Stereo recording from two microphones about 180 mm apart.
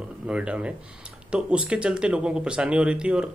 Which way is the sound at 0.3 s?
5° right (ahead or behind).